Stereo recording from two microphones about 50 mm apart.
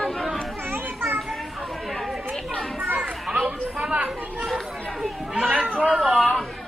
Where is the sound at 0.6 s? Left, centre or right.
Right.